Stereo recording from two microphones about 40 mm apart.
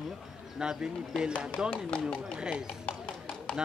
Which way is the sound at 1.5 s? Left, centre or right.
Left.